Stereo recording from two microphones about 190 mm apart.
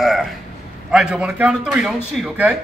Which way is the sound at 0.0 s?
Centre (ahead or behind).